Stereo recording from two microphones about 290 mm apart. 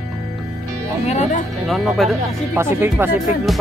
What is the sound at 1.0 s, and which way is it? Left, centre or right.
Speech, left.